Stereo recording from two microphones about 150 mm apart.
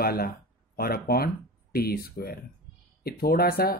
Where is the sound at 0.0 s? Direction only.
90° left.